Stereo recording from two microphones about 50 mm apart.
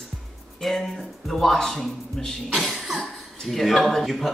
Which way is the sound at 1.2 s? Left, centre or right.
Centre.